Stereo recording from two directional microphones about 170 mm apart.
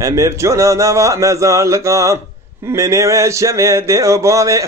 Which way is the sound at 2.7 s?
15° right (ahead or behind).